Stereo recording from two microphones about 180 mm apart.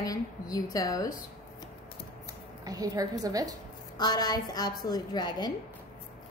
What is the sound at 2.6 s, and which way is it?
Speech, 20° right (ahead or behind).